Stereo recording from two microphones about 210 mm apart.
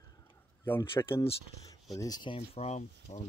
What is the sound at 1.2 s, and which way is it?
Speech, 15° left (ahead or behind).